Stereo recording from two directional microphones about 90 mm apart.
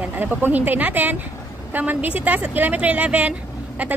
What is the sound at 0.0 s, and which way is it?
A woman's voice, 20° right (ahead or behind).